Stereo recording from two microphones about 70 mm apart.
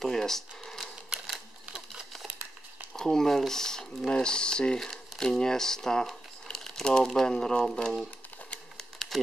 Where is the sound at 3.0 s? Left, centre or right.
Centre.